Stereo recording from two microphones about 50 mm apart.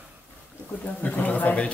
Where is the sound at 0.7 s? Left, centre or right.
Left.